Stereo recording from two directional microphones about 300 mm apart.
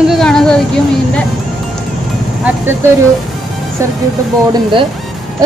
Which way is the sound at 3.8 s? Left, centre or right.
Centre.